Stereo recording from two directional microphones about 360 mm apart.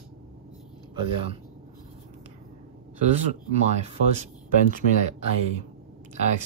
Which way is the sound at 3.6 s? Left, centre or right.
Centre.